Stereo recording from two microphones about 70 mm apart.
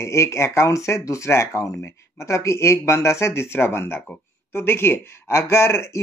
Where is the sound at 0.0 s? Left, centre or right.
Left.